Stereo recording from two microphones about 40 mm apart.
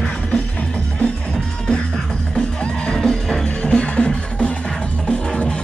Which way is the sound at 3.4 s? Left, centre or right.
Left.